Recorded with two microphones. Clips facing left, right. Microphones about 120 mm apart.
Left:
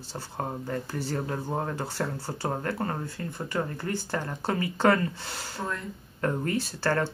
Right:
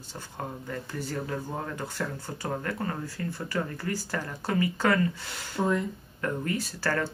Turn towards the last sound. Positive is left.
turn(degrees=30)  # may be behind; listen again after turning